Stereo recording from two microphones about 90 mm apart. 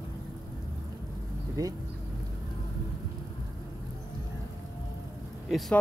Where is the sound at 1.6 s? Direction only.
35° right (ahead or behind).